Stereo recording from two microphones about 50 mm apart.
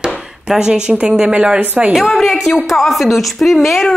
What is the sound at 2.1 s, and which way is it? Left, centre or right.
A woman's voice, centre.